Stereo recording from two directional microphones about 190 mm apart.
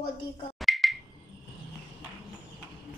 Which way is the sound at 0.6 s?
Centre (ahead or behind).